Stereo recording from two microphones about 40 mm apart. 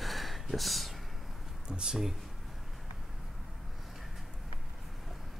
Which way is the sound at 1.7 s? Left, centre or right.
Centre.